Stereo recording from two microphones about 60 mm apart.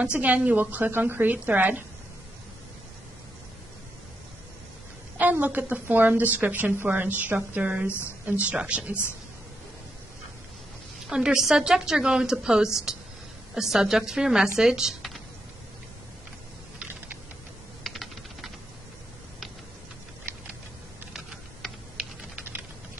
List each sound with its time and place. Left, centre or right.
0.0 s a woman's voice: right
5.2 s a woman's voice: right
11.1 s a woman's voice: centre
17.8 s typing: centre